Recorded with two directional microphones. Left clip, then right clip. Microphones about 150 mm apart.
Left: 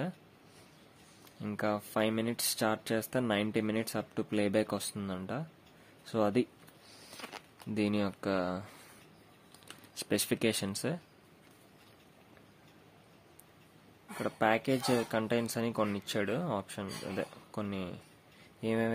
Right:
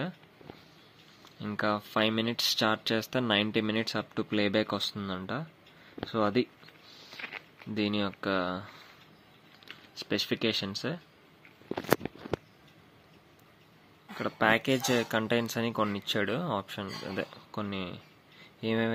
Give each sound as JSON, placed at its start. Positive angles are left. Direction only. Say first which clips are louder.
{"t": 1.4, "sound": "speech", "louder": "right 4 dB", "side_deg": 10}
{"t": 7.7, "sound": "speech", "louder": "right 2 dB", "side_deg": 15}
{"t": 9.9, "sound": "speech", "louder": "right 2 dB", "side_deg": 25}
{"t": 14.1, "sound": "speech", "louder": "right 3 dB", "side_deg": 0}